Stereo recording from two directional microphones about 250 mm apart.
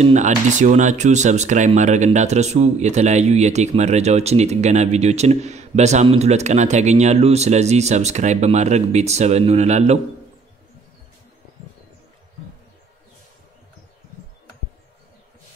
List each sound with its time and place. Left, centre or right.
0.0 s speech: right